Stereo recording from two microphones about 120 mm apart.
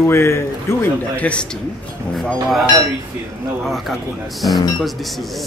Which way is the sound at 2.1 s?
Centre (ahead or behind).